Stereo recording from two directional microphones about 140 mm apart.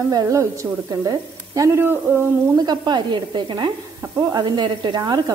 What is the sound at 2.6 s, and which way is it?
Sizzle, 30° right (ahead or behind).